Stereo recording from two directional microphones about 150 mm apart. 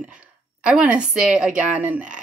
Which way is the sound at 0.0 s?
5° right (ahead or behind).